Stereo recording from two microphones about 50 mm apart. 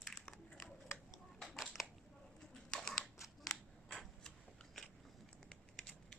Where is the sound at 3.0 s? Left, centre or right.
Centre.